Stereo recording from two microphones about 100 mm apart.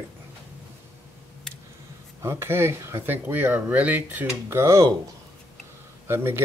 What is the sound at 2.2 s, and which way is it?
Speech, 25° right (ahead or behind).